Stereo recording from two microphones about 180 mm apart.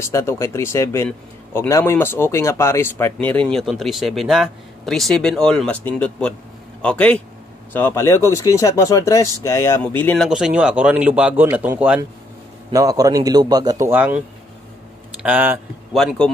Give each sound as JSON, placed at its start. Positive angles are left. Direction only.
{"t": 0.0, "sound": "speech", "side_deg": 15}
{"t": 12.7, "sound": "a man's voice", "side_deg": -20}
{"t": 15.2, "sound": "speech", "side_deg": -10}
{"t": 15.9, "sound": "a man's voice", "side_deg": 0}